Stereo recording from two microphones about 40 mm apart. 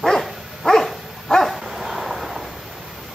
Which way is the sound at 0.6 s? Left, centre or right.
Centre.